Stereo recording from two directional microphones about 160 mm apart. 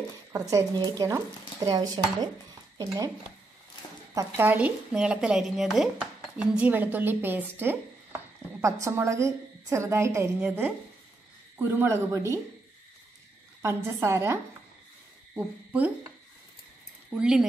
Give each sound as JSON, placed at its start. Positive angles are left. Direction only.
{"t": 0.3, "sound": "speech", "side_deg": -20}
{"t": 4.4, "sound": "speech", "side_deg": -10}
{"t": 13.6, "sound": "speech", "side_deg": -15}
{"t": 17.1, "sound": "speech", "side_deg": -5}